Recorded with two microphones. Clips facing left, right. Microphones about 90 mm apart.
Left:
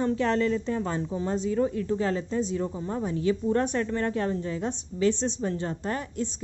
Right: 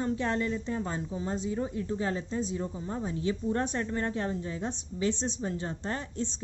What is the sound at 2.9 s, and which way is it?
A woman's voice, 25° right (ahead or behind).